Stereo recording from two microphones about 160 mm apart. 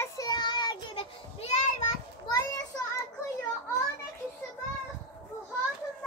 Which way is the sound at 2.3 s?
20° left (ahead or behind).